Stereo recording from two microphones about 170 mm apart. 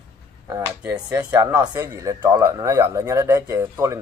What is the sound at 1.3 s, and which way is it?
Speech, 20° right (ahead or behind).